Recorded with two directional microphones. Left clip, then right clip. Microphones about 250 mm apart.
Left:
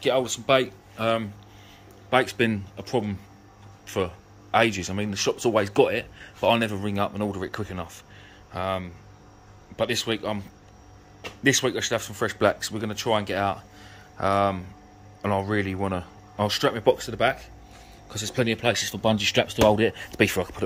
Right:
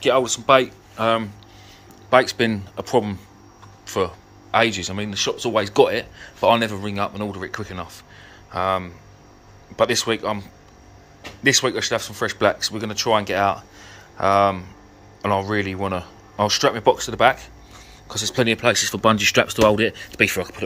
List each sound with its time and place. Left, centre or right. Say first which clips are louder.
0.0 s speech: right 5 dB; centre
11.4 s speech: right 4 dB; centre